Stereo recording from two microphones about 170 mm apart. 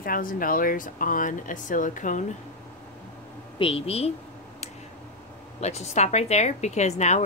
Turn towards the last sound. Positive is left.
turn(degrees=40)  # may be behind; listen again after turning